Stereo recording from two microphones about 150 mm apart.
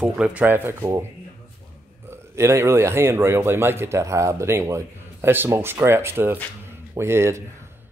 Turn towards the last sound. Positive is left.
turn(degrees=-15)  # may be behind; listen again after turning